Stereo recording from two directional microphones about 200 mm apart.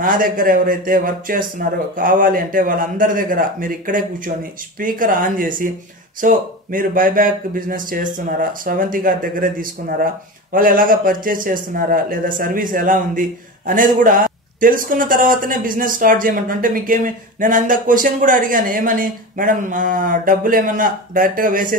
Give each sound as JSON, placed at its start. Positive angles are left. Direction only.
{"t": 0.0, "sound": "a man's voice", "side_deg": -45}